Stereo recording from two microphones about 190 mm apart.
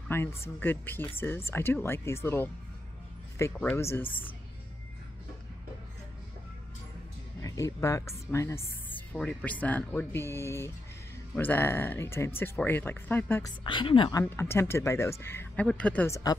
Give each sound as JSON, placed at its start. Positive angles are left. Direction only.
{"t": 0.1, "sound": "speech", "side_deg": 15}
{"t": 7.4, "sound": "speech", "side_deg": 15}
{"t": 13.7, "sound": "a woman's voice", "side_deg": 25}
{"t": 14.2, "sound": "speech", "side_deg": 10}